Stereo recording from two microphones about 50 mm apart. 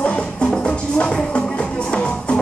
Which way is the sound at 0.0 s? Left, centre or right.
Left.